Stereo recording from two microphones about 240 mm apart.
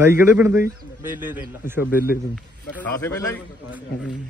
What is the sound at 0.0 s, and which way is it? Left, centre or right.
A man's voice, centre.